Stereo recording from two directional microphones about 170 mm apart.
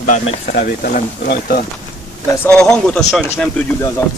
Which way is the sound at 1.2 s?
60° left (ahead or behind).